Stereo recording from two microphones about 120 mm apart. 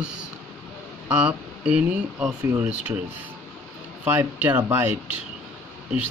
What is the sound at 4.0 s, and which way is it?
Speech, 15° right (ahead or behind).